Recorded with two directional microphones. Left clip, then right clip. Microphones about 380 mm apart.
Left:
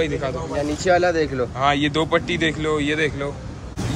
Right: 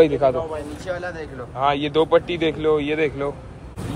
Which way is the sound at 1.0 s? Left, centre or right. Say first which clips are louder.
Left 11 dB; left.